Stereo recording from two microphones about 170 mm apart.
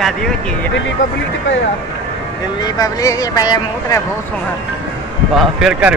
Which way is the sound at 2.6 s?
20° left (ahead or behind).